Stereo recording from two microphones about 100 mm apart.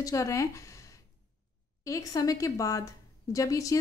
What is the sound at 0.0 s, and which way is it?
A woman's voice, 35° left (ahead or behind).